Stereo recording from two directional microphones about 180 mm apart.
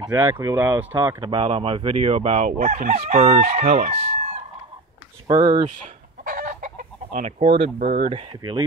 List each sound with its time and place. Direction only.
0.0 s speech: 20° right (ahead or behind)
0.9 s fowl: 25° right (ahead or behind); by 3.9 s 45° right (ahead or behind)
3.9 s speech: 35° right (ahead or behind)
5.3 s speech: 20° right (ahead or behind)
6.2 s chicken: 45° right (ahead or behind)
7.3 s fowl: 30° right (ahead or behind)
7.8 s speech: 45° right (ahead or behind)
8.1 s fowl: 30° right (ahead or behind)